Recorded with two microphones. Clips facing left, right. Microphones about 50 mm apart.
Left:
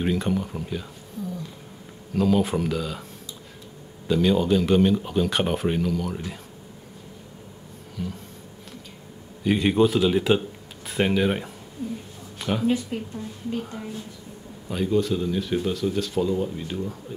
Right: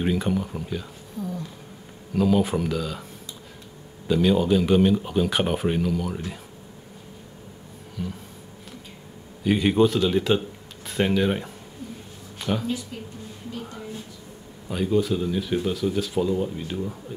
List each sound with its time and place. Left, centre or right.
0.0 s speech: centre
2.1 s speech: centre
4.1 s speech: centre
8.0 s speech: centre
9.4 s speech: centre
12.9 s a woman's voice: left
14.7 s speech: centre